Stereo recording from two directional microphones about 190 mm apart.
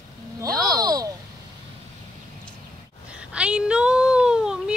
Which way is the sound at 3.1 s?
5° right (ahead or behind).